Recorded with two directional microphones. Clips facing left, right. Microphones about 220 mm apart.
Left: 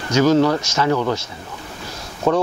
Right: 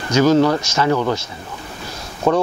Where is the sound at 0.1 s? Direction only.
15° right (ahead or behind).